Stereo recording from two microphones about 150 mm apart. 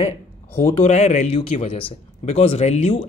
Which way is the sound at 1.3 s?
40° left (ahead or behind).